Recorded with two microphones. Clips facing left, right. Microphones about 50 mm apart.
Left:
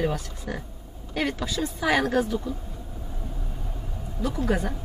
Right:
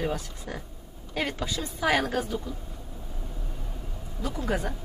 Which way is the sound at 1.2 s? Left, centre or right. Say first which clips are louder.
Left 3 dB; centre.